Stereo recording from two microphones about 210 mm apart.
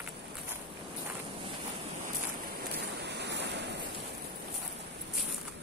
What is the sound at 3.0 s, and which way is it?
Waves, 55° right (ahead or behind).